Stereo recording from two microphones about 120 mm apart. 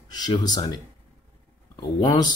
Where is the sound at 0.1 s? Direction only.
35° left (ahead or behind).